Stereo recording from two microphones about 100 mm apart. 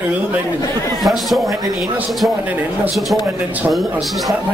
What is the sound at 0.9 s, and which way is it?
Speech, centre (ahead or behind).